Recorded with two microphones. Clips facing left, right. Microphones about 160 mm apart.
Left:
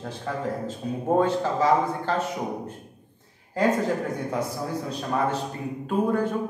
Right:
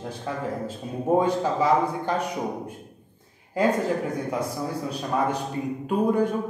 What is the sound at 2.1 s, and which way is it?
Speech, 15° right (ahead or behind).